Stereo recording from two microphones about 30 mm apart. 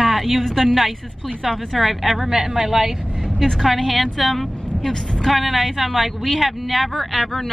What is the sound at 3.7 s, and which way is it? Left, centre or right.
A woman's voice, centre.